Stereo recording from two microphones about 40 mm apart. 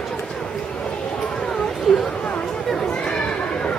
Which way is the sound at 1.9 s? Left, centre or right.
Centre.